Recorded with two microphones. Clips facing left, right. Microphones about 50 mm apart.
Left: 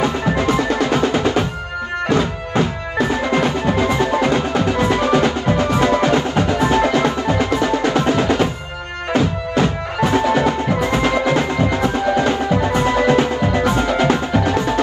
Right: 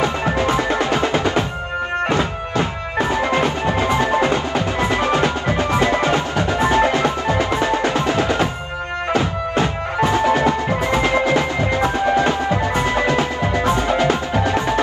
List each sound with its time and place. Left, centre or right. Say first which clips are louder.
0.4 s music: left 1 dB; right
0.9 s percussion: left 1 dB; right
2.6 s music: left 2 dB; right
14.1 s music: left 2 dB; right